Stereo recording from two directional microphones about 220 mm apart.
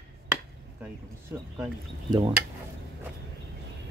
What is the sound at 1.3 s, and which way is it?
Speech, 10° right (ahead or behind).